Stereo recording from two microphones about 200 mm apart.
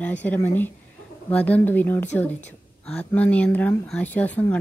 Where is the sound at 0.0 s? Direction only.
10° left (ahead or behind).